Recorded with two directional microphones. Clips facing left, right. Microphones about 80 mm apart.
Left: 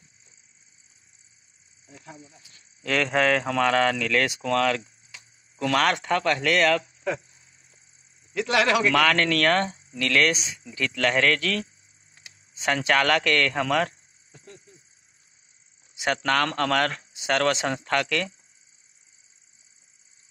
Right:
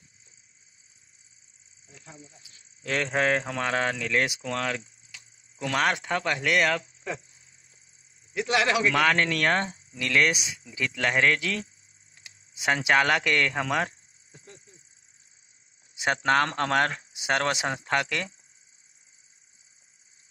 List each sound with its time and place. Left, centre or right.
1.9 s speech: left
2.5 s speech: left
3.5 s speech: right
8.4 s speech: right
12.6 s speech: centre
15.9 s speech: right